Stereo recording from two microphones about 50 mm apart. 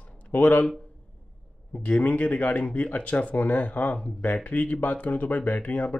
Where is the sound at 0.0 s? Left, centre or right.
Left.